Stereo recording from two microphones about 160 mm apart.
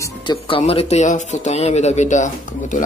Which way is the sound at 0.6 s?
40° left (ahead or behind).